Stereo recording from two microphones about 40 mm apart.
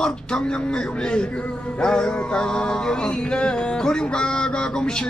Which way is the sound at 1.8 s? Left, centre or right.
Left.